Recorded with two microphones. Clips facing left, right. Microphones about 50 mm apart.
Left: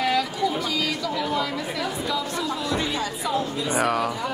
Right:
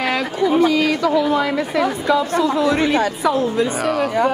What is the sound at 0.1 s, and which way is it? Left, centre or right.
A woman's voice, right.